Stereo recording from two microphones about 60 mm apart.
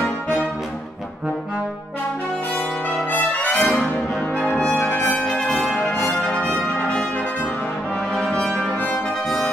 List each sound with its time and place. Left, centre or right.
3.1 s brass instrument: left
4.7 s brass instrument: left
5.6 s brass instrument: left
8.5 s brass instrument: left